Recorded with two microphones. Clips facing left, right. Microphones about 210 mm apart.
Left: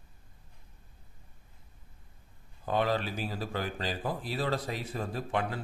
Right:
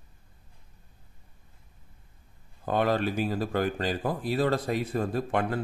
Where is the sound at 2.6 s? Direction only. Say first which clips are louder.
Right 4 dB; 50° right (ahead or behind).